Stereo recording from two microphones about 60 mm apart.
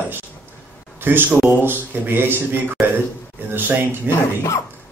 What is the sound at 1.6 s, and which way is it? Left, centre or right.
Mantra, right.